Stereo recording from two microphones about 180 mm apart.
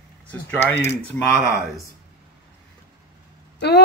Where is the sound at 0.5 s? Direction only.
10° left (ahead or behind).